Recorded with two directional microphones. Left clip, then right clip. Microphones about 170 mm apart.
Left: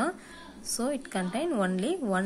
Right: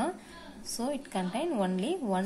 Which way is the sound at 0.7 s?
15° left (ahead or behind).